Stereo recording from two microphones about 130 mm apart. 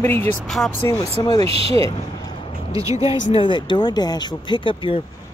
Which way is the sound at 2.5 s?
45° left (ahead or behind).